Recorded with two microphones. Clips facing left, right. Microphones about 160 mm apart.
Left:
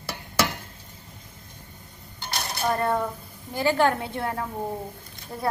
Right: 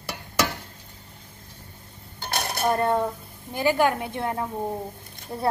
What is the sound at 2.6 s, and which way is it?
A woman's voice, 25° right (ahead or behind).